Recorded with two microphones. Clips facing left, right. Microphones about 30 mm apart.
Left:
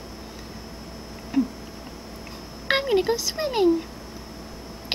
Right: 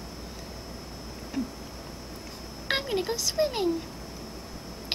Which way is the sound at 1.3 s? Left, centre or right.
Centre.